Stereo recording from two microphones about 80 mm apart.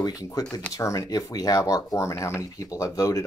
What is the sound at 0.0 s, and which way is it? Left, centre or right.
Speech, left.